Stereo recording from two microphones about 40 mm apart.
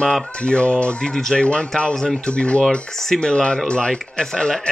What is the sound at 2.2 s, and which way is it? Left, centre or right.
Speech, left.